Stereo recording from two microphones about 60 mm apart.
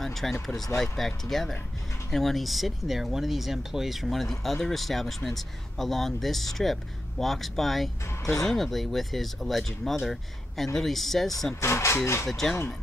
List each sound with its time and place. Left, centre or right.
0.0 s speech: centre
11.6 s speech: left
12.3 s speech: centre